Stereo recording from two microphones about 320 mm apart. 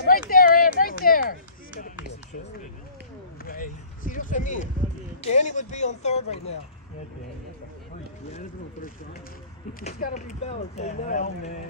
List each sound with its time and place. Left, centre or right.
0.3 s a sound: left
3.4 s speech: left
8.3 s speech: left